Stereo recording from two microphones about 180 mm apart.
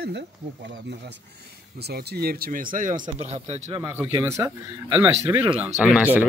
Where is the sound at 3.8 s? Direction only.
10° right (ahead or behind).